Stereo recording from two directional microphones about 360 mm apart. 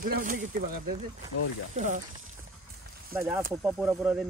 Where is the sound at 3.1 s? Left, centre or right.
Centre.